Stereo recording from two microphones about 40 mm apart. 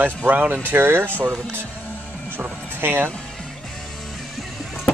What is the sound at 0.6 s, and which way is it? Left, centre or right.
Speech, right.